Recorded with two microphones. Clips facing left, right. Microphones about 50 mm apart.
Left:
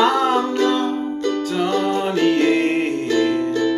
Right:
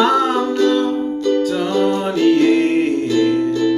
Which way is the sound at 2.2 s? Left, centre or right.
Left.